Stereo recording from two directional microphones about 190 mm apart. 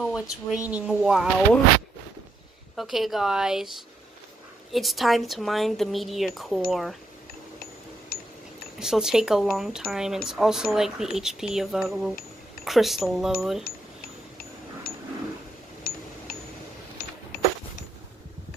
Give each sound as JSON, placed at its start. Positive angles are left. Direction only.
{"t": 0.0, "sound": "speech", "side_deg": 0}
{"t": 2.7, "sound": "speech", "side_deg": 0}
{"t": 8.7, "sound": "speech", "side_deg": -5}
{"t": 17.0, "sound": "cash register", "side_deg": 55}